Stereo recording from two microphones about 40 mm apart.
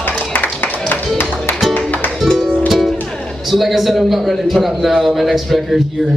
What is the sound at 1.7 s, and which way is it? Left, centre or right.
Music, left.